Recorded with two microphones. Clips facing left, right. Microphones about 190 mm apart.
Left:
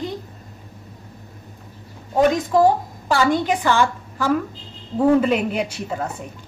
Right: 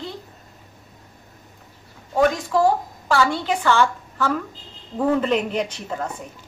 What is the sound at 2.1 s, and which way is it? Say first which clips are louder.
A woman's voice: left 3 dB; 20° left (ahead or behind).